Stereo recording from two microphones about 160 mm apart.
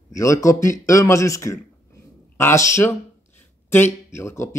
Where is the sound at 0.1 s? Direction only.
20° left (ahead or behind).